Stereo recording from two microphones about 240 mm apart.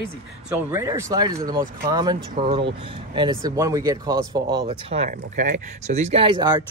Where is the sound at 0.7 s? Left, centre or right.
Centre.